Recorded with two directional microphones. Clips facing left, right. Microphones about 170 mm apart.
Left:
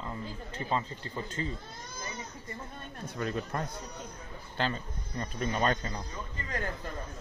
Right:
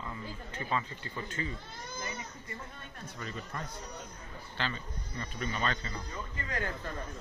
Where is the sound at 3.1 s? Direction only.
55° left (ahead or behind).